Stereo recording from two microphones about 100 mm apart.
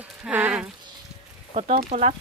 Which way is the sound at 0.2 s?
15° right (ahead or behind).